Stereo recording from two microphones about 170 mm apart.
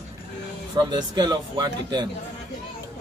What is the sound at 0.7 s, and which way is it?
Speech, 25° right (ahead or behind).